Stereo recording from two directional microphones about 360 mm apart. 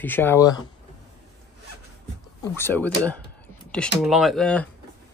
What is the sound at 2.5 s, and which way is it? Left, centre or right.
Speech, centre.